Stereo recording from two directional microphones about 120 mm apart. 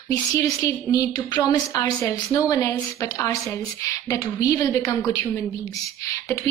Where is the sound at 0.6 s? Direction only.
30° left (ahead or behind).